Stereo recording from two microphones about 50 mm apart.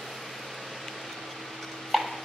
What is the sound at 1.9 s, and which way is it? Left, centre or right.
Clip-clop, centre.